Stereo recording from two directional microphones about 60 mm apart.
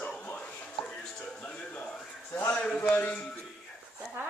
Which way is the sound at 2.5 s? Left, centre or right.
Centre.